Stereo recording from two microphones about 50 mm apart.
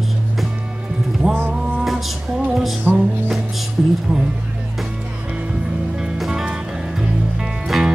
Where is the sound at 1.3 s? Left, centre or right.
Right.